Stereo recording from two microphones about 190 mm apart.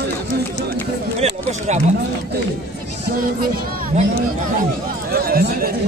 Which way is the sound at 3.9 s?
35° right (ahead or behind).